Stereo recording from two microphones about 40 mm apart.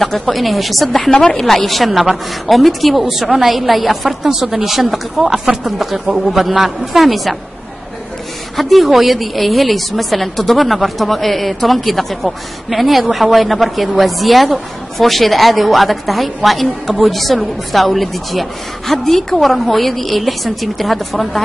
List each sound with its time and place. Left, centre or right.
0.0 s a woman's voice: centre
1.1 s a woman's voice: left
1.4 s a woman's voice: centre
8.5 s a woman's voice: centre